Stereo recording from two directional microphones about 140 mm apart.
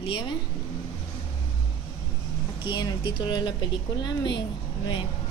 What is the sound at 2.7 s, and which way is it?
Speech, 30° left (ahead or behind).